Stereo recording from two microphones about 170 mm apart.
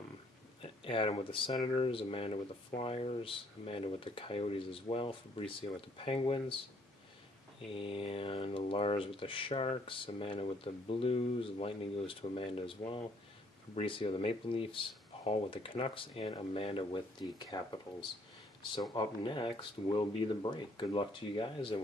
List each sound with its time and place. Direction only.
0.6 s speech: 30° left (ahead or behind)
7.7 s speech: 35° left (ahead or behind)
18.6 s speech: 30° left (ahead or behind)